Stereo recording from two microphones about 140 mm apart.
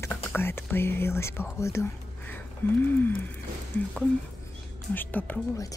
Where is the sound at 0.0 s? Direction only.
15° left (ahead or behind).